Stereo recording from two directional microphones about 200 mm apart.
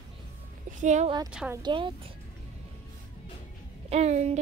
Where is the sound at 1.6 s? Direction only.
25° right (ahead or behind).